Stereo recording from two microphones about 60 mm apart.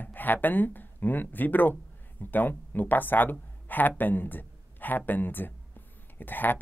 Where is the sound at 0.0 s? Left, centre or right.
Left.